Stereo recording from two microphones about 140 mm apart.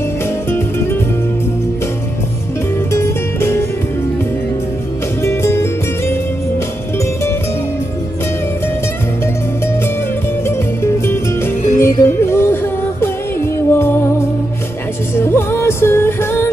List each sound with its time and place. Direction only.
0.5 s music: 20° left (ahead or behind)
2.9 s music: 20° left (ahead or behind)
5.2 s music: 20° left (ahead or behind)
10.4 s music: 20° left (ahead or behind)
13.7 s music: 15° left (ahead or behind)
15.1 s music: 15° left (ahead or behind)